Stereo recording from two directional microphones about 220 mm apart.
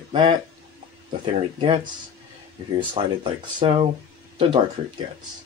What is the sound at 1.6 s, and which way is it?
Speech, 25° right (ahead or behind).